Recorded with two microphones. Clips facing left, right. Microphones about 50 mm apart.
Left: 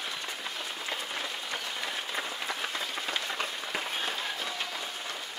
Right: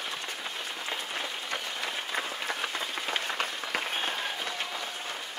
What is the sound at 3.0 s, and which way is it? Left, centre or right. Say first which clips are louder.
Applause: right 2 dB; right.